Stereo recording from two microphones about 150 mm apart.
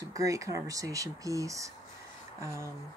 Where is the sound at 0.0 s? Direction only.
20° right (ahead or behind).